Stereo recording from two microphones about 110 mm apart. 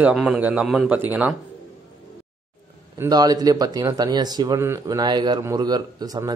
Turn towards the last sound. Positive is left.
turn(degrees=-40)  # may be behind; listen again after turning